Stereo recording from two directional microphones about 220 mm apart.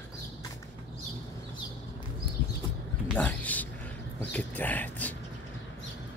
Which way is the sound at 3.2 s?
5° left (ahead or behind).